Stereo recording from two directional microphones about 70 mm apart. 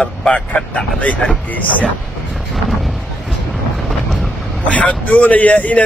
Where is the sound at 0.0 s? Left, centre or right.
Centre.